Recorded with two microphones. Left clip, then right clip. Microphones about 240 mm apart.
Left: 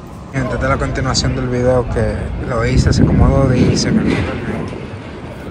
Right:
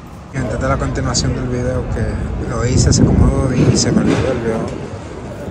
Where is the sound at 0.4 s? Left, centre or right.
Centre.